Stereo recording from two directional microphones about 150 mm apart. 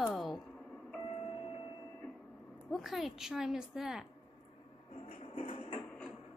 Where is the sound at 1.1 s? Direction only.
40° left (ahead or behind).